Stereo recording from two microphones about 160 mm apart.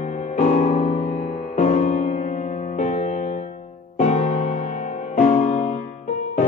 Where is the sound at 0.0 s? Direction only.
50° left (ahead or behind).